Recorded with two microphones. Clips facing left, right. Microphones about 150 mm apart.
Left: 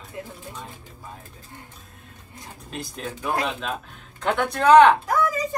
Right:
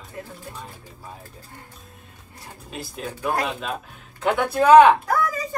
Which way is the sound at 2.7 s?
5° right (ahead or behind).